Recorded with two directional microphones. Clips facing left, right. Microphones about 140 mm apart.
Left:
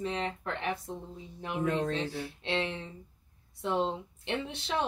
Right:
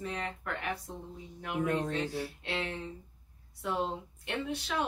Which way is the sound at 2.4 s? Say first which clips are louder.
Left 3 dB; 25° left (ahead or behind).